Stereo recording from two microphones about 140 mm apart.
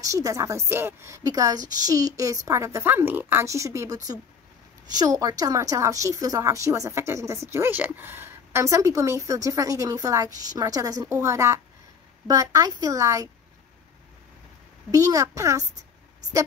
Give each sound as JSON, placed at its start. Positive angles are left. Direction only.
{"t": 0.0, "sound": "speech", "side_deg": -25}
{"t": 14.9, "sound": "speech", "side_deg": -25}